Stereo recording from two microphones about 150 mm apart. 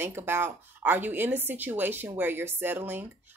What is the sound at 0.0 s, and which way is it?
A woman's voice, 15° right (ahead or behind).